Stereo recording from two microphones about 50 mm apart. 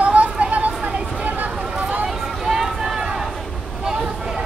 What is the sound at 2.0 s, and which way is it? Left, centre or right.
Run, centre.